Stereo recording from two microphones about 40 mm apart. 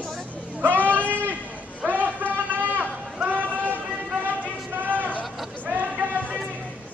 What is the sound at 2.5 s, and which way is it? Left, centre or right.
Run, right.